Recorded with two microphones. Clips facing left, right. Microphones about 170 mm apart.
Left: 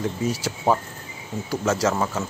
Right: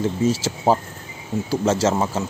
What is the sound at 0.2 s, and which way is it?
Speech, 25° right (ahead or behind).